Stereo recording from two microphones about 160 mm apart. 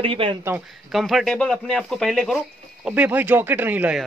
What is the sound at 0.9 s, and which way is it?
Speech, centre (ahead or behind).